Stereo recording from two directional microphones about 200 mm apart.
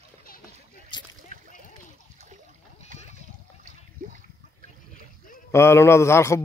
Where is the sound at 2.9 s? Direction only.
40° right (ahead or behind).